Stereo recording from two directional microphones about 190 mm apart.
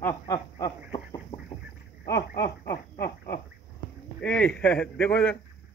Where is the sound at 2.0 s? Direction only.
15° left (ahead or behind).